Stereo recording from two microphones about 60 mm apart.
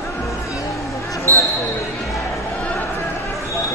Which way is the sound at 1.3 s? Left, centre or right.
Left.